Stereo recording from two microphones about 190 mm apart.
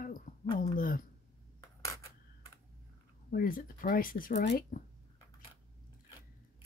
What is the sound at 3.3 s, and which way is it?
Speech, 50° left (ahead or behind).